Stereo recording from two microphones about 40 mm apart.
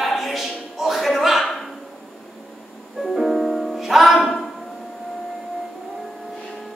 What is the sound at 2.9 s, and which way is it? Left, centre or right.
Music, centre.